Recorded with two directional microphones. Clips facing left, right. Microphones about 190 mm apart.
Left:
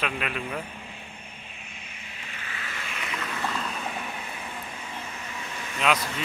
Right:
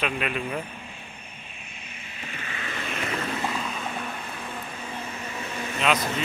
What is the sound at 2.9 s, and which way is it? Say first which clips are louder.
Vehicle: right 6 dB; 40° right (ahead or behind).